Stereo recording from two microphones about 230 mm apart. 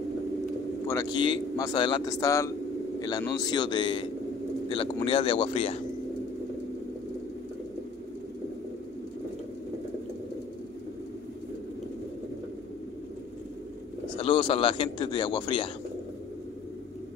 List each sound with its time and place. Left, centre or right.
0.8 s speech: centre
14.1 s speech: left